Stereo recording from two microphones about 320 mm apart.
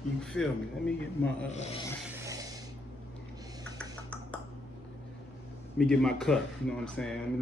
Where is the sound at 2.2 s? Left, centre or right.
Centre.